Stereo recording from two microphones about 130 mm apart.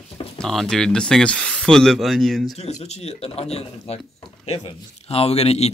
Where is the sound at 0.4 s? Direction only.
5° left (ahead or behind).